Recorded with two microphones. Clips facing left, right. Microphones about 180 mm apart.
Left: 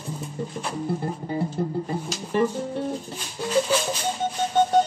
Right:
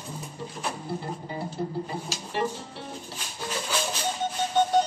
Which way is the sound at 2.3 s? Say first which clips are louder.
Left 8 dB; 50° left (ahead or behind).